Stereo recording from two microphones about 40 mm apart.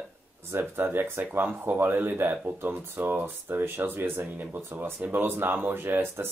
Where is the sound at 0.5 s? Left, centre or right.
Right.